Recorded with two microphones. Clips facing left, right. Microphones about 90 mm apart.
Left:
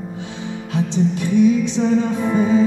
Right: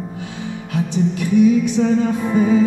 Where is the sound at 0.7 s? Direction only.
25° left (ahead or behind).